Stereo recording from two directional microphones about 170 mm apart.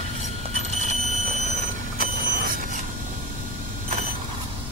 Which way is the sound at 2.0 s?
55° right (ahead or behind).